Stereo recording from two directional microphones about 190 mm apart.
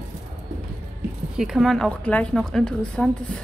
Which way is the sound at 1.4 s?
Centre (ahead or behind).